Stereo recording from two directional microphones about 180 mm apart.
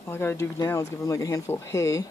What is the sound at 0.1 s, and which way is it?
Speech, 15° left (ahead or behind).